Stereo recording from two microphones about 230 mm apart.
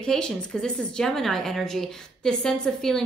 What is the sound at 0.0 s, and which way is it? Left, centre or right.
A woman's voice, centre.